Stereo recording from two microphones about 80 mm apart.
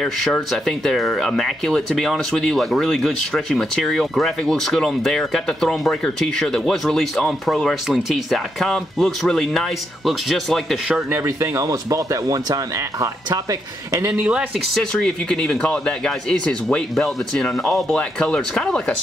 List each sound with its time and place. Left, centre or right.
0.0 s speech: centre
11.2 s speech: right
14.8 s speech: centre